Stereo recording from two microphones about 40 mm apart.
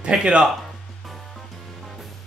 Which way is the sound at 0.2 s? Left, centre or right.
Right.